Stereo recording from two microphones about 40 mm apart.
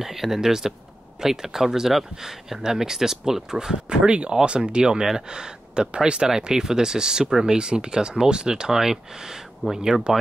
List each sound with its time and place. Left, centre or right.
0.0 s speech: centre
3.9 s speech: right